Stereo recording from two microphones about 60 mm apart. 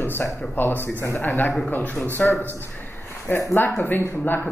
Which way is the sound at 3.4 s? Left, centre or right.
Left.